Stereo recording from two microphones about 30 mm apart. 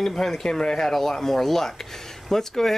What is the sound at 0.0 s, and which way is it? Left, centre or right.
Speech, centre.